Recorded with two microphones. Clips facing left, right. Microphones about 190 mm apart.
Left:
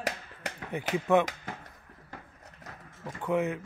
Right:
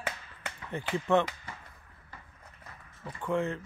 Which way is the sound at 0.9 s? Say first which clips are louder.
Left 2 dB; 15° left (ahead or behind).